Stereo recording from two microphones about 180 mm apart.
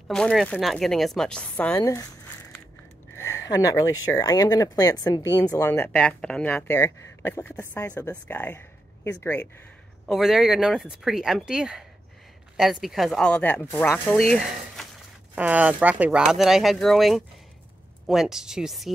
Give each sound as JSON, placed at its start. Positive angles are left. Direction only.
{"t": 0.1, "sound": "speech", "side_deg": 5}
{"t": 1.8, "sound": "speech", "side_deg": 20}
{"t": 3.2, "sound": "a sound", "side_deg": 15}
{"t": 4.1, "sound": "speech", "side_deg": 20}
{"t": 10.0, "sound": "speech", "side_deg": 0}
{"t": 15.3, "sound": "speech", "side_deg": -10}